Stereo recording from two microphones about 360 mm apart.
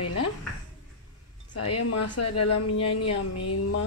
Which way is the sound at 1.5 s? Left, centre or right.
Left.